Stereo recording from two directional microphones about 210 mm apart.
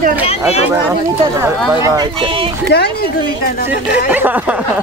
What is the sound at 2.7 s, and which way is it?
Speech, 50° left (ahead or behind).